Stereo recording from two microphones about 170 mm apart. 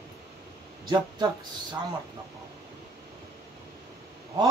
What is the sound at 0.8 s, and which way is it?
Speech, 25° right (ahead or behind).